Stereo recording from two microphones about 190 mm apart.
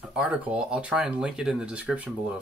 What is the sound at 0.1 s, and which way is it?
Speech, 5° right (ahead or behind).